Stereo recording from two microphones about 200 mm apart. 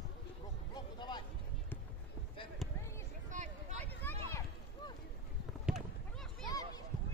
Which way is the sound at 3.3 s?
35° right (ahead or behind).